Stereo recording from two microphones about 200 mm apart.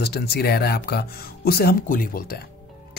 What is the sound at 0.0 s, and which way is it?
Speech, 55° left (ahead or behind).